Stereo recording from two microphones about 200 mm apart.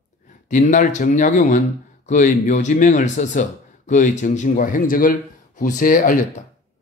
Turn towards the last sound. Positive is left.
turn(degrees=45)  # may be behind; listen again after turning